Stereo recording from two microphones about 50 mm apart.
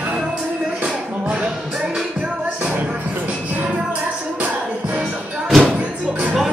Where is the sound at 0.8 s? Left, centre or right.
Centre.